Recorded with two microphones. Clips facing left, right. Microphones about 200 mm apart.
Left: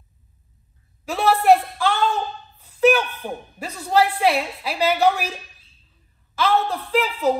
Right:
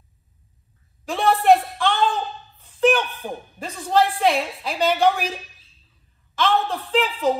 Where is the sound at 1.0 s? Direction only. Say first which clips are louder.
Even; 5° left (ahead or behind).